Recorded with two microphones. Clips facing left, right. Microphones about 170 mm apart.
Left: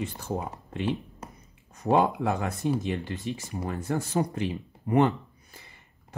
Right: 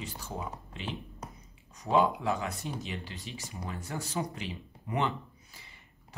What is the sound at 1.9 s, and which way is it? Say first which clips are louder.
Speech: left 3 dB; 55° left (ahead or behind).